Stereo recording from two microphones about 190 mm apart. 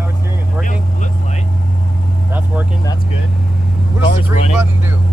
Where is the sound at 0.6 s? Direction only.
40° left (ahead or behind).